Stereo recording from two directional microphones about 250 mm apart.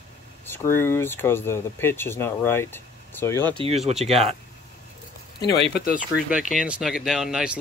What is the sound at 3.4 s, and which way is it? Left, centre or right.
Speech, centre.